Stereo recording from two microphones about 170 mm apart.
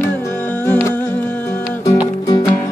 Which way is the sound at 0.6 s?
10° left (ahead or behind).